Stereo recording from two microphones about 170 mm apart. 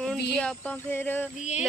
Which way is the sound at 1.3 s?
45° left (ahead or behind).